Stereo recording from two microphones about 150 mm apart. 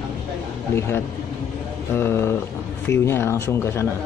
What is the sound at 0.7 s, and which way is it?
Speech, 15° left (ahead or behind).